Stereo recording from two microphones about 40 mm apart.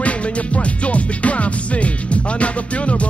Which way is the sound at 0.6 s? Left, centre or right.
Left.